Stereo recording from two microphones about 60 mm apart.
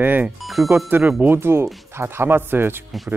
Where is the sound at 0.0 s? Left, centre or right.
Right.